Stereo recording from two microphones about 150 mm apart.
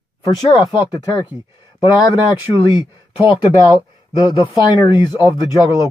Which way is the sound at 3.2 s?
20° right (ahead or behind).